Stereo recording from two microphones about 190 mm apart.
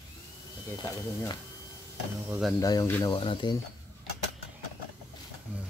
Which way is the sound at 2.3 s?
Centre (ahead or behind).